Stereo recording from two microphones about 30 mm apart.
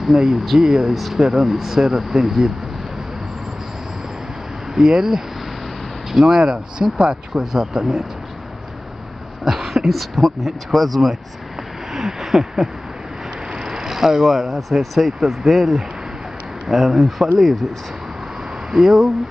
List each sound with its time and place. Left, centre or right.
0.2 s speech: centre
4.8 s speech: right
6.1 s speech: centre
6.4 s speech: right
7.5 s speech: centre
9.4 s a sound: centre
9.8 s speech: centre
11.9 s a sound: centre
13.5 s speech: right; by 15.6 s centre
16.6 s speech: centre
18.7 s speech: centre